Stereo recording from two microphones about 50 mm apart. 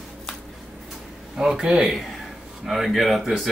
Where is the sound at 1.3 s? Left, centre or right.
Centre.